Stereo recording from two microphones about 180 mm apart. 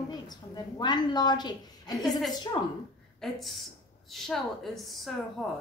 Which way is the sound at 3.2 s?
Centre (ahead or behind).